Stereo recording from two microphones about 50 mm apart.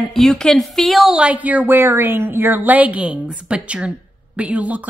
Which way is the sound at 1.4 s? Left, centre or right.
Right.